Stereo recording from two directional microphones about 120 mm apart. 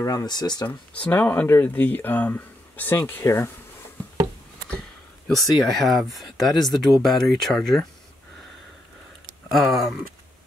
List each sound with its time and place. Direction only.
0.0 s speech: 30° left (ahead or behind)
0.7 s speech: 10° left (ahead or behind)
5.3 s speech: centre (ahead or behind)
9.5 s speech: centre (ahead or behind)